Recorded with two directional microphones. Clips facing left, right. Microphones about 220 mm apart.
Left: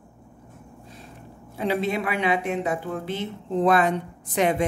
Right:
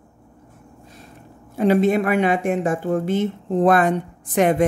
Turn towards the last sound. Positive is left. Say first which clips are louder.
# right 5 dB
turn(degrees=-50)  # may be behind; listen again after turning